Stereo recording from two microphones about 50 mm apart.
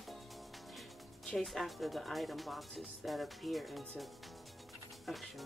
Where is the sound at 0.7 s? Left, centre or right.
Centre.